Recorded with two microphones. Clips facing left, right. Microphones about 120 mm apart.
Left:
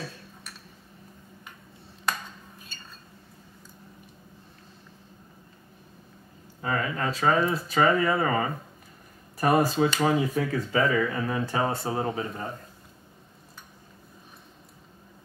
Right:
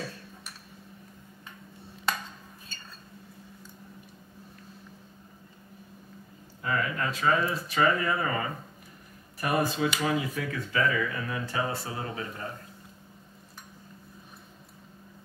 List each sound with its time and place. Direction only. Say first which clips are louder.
6.6 s speech: left 2 dB; 30° left (ahead or behind)